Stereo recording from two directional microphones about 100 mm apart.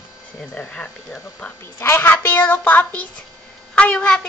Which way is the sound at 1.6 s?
25° left (ahead or behind).